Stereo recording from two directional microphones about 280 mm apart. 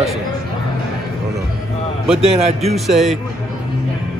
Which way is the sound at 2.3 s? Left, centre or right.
Right.